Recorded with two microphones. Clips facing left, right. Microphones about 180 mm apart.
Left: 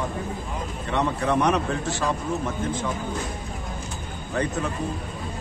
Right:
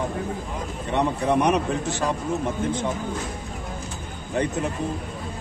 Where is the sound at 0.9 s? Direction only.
15° right (ahead or behind).